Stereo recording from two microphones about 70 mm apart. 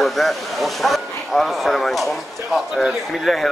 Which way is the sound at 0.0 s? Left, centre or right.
Centre.